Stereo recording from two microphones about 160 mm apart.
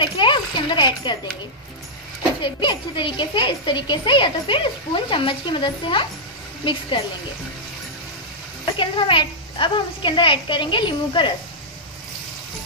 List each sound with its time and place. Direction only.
0.0 s speech: 30° left (ahead or behind)
2.4 s a child's voice: 30° left (ahead or behind)
8.7 s a child's voice: 30° left (ahead or behind)